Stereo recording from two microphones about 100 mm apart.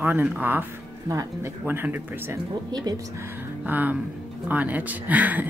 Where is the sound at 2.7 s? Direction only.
40° right (ahead or behind).